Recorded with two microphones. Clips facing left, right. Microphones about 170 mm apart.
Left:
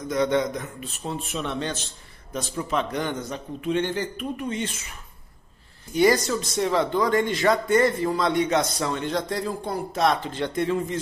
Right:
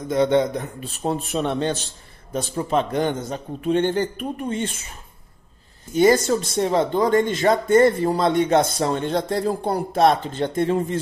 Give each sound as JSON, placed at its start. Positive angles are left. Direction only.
{"t": 0.1, "sound": "speech", "side_deg": -30}
{"t": 6.0, "sound": "speech", "side_deg": -25}
{"t": 7.6, "sound": "speech", "side_deg": -35}
{"t": 9.4, "sound": "speech", "side_deg": -45}